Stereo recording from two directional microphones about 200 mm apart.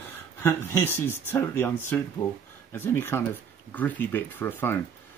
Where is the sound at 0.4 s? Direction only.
10° left (ahead or behind).